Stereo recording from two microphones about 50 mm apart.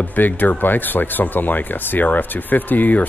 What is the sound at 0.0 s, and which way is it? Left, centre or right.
A man's voice, left.